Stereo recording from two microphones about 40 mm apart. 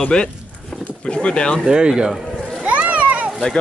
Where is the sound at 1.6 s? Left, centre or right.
Right.